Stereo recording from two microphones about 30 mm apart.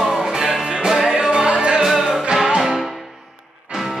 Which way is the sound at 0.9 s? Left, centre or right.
Centre.